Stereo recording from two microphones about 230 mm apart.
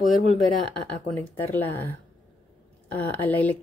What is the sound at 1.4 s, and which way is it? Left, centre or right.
Speech, centre.